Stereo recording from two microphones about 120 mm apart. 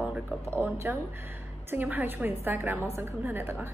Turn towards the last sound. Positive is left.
turn(degrees=-20)  # may be behind; listen again after turning